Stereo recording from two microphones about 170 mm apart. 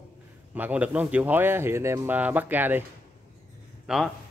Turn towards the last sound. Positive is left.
turn(degrees=0)  # may be behind; listen again after turning